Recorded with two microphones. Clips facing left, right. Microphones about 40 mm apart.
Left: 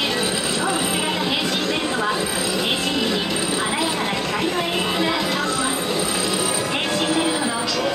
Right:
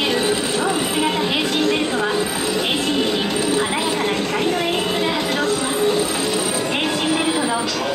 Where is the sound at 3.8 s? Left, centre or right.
Centre.